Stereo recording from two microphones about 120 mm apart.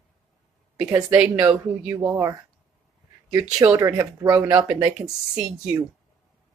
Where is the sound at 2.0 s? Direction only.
25° right (ahead or behind).